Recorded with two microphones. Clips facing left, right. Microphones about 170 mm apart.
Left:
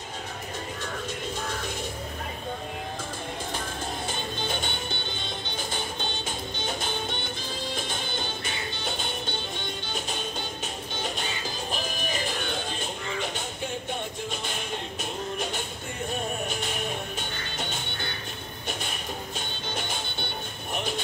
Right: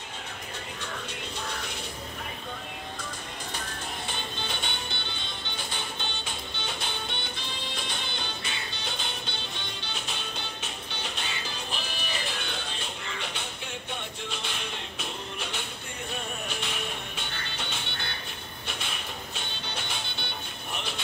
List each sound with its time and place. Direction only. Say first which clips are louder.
4.1 s music: left 4 dB; 45° left (ahead or behind)
11.0 s music: left 5 dB; 45° left (ahead or behind)
14.3 s music: left 4 dB; 45° left (ahead or behind)
17.6 s music: left 4 dB; 45° left (ahead or behind)